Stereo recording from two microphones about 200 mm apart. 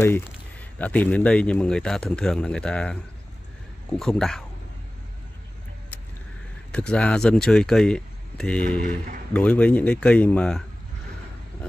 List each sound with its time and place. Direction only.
0.0 s speech: 10° left (ahead or behind)
6.7 s speech: 5° left (ahead or behind)